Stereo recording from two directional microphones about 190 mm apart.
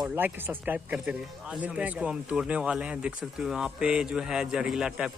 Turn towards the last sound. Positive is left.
turn(degrees=-5)  # may be behind; listen again after turning